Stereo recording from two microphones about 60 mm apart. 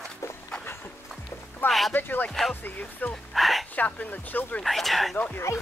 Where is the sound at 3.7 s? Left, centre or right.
Left.